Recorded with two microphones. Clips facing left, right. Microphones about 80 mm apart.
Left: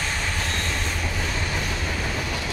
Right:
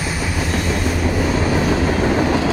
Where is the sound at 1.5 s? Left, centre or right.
Right.